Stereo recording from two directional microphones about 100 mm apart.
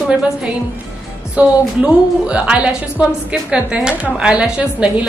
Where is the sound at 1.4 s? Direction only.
10° right (ahead or behind).